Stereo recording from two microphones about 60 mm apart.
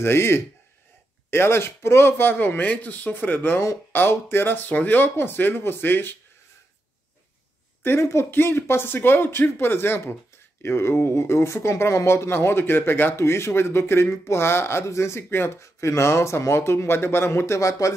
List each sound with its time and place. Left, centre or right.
0.0 s speech: left
7.8 s speech: left
15.6 s speech: left